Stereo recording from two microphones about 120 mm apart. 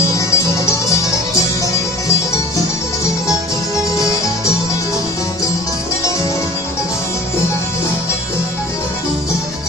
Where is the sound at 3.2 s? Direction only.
25° left (ahead or behind).